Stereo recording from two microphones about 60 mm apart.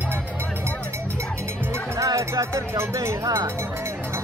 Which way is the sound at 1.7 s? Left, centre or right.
Right.